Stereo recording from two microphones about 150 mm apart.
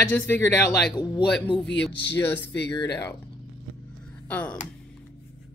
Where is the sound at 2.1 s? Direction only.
15° left (ahead or behind).